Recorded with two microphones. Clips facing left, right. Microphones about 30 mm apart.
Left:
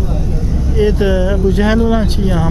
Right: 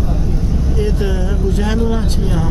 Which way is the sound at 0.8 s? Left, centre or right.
Left.